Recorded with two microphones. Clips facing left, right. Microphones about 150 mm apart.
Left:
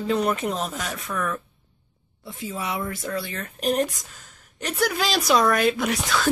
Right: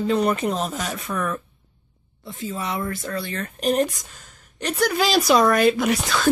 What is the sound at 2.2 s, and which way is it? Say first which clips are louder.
Speech: right 2 dB; 10° left (ahead or behind).